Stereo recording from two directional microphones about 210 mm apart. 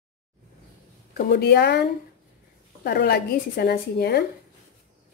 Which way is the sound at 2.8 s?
45° left (ahead or behind).